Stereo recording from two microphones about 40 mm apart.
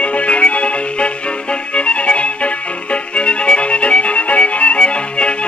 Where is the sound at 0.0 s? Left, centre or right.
Left.